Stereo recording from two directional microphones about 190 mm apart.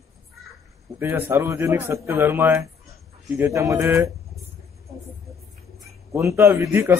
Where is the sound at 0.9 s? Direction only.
10° right (ahead or behind).